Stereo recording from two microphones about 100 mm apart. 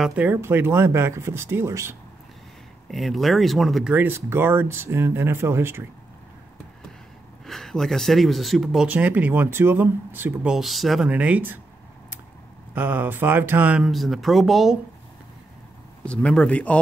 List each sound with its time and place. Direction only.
0.1 s speech: 15° right (ahead or behind)
2.9 s speech: centre (ahead or behind)
3.9 s speech: 20° right (ahead or behind)
7.4 s speech: 5° left (ahead or behind)
8.8 s speech: 15° right (ahead or behind)
10.4 s speech: 5° right (ahead or behind)
11.1 s speech: 15° right (ahead or behind)
12.7 s speech: 20° right (ahead or behind)
13.7 s speech: centre (ahead or behind)
16.1 s speech: 10° left (ahead or behind)